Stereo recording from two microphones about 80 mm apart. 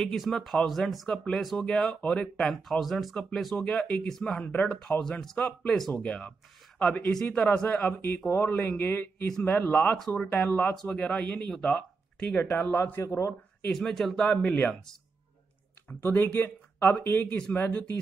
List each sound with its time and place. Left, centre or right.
0.0 s speech: centre
3.5 s speech: centre
5.2 s speech: centre
8.3 s speech: left
9.8 s speech: centre
10.3 s speech: centre
10.6 s speech: centre; by 13.3 s left
13.7 s speech: centre
15.9 s speech: left